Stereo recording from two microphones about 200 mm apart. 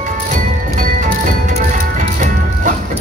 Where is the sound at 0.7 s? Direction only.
40° right (ahead or behind).